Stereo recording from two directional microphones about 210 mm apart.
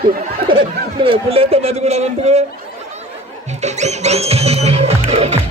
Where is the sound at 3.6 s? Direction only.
35° right (ahead or behind).